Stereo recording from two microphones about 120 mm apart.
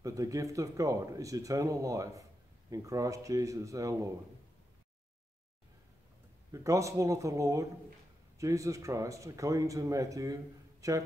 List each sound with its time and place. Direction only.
0.0 s speech: 30° right (ahead or behind)
6.5 s speech: 25° right (ahead or behind)